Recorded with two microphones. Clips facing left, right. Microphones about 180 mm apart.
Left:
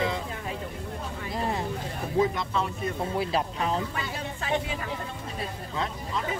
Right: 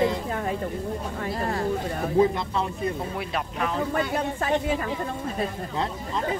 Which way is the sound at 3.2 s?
30° left (ahead or behind).